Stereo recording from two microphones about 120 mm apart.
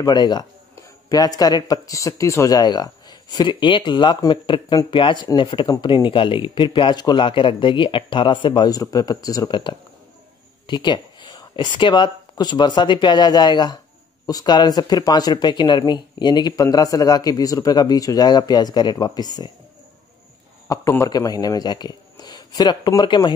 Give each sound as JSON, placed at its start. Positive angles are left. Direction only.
{"t": 0.0, "sound": "speech", "side_deg": 35}
{"t": 20.6, "sound": "a sound", "side_deg": 30}
{"t": 21.1, "sound": "speech", "side_deg": 35}